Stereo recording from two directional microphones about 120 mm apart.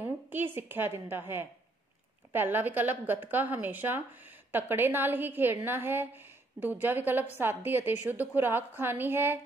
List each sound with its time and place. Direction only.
0.0 s a woman's voice: 15° right (ahead or behind)